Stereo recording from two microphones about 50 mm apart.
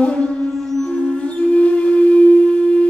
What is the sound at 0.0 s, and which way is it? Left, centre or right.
Music, centre.